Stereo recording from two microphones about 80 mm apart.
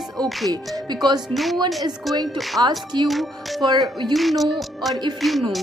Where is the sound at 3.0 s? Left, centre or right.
Centre.